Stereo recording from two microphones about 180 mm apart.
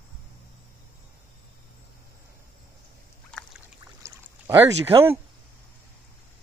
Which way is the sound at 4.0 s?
15° right (ahead or behind).